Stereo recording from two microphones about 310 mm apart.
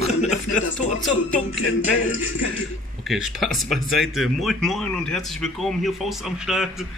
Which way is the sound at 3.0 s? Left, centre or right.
Centre.